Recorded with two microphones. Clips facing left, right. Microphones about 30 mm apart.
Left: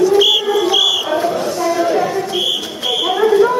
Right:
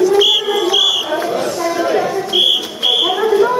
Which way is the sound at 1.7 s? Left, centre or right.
Centre.